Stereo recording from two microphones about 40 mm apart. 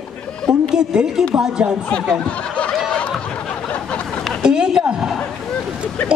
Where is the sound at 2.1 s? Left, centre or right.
Left.